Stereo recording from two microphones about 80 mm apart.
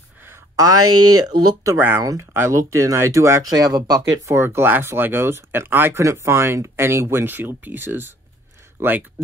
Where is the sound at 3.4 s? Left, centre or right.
Right.